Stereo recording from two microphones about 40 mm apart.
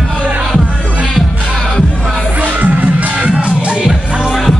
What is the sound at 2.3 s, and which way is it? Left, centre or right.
Music, right.